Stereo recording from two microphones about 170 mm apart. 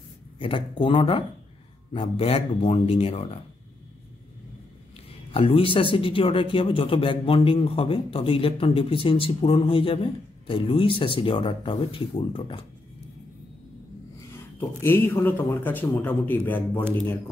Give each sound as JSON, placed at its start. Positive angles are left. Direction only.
{"t": 0.4, "sound": "a man's voice", "side_deg": 30}
{"t": 5.3, "sound": "a man's voice", "side_deg": 35}
{"t": 14.3, "sound": "speech", "side_deg": 15}